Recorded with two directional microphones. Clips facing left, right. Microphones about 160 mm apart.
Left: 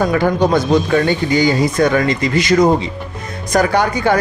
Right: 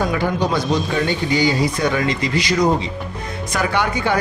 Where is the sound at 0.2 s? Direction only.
50° left (ahead or behind).